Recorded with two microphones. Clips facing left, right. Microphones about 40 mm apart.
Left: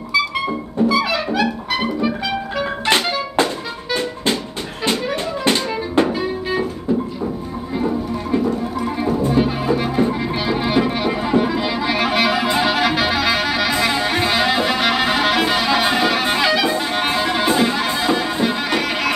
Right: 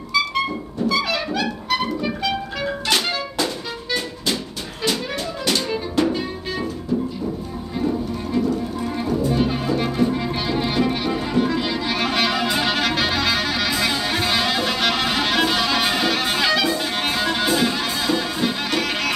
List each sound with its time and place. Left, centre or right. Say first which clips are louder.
0.8 s music: left 3 dB; centre
2.6 s music: left 4 dB; left
6.0 s music: left 3 dB; left
7.8 s music: left 1 dB; left
9.3 s music: left 3 dB; centre
13.7 s music: left 3 dB; left